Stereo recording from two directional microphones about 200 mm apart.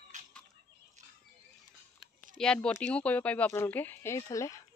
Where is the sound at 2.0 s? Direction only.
Centre (ahead or behind).